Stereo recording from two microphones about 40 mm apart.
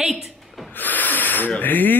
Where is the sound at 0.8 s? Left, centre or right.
Left.